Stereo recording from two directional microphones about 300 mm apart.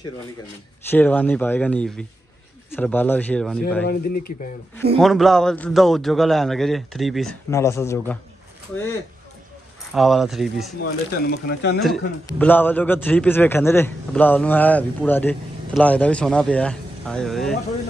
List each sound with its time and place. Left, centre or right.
0.8 s a man's voice: centre
3.8 s speech: left
4.9 s a man's voice: centre
9.9 s a man's voice: centre
10.8 s speech: left
12.3 s a man's voice: centre